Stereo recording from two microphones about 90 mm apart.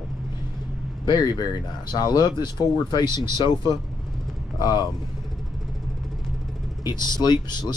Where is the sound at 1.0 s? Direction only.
55° left (ahead or behind).